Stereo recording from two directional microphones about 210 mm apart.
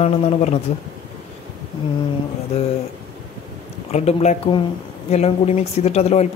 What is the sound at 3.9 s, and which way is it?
Speech, 30° left (ahead or behind).